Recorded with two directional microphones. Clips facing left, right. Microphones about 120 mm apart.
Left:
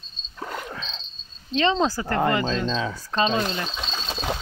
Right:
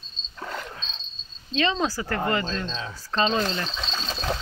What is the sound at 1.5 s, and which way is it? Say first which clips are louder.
Speech: left 3 dB; 25° left (ahead or behind).